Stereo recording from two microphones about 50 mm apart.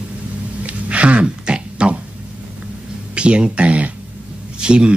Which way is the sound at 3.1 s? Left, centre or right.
Right.